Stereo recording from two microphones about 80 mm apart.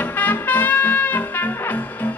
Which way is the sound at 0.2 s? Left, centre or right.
Left.